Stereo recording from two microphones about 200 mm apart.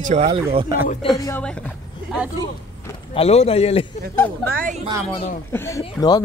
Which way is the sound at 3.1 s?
30° left (ahead or behind).